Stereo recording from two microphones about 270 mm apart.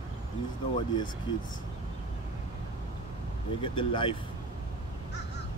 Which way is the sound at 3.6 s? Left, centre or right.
Centre.